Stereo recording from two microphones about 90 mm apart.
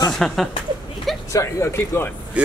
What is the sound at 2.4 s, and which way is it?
Speech, 15° right (ahead or behind).